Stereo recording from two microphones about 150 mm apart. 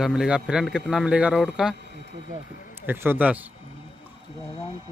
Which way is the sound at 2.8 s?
15° right (ahead or behind).